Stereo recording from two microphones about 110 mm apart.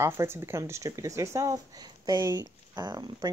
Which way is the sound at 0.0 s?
25° right (ahead or behind).